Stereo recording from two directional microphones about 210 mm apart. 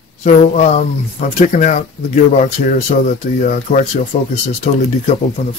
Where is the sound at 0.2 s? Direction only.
30° left (ahead or behind).